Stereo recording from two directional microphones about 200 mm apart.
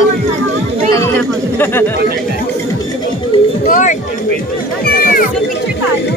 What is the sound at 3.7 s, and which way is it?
Speech, 40° left (ahead or behind).